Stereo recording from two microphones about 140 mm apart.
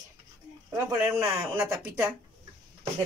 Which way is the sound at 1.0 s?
20° right (ahead or behind).